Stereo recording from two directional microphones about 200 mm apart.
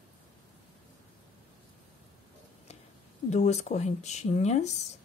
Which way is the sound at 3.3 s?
35° left (ahead or behind).